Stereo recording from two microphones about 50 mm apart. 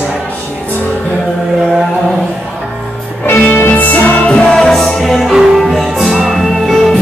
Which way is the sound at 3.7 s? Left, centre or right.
Left.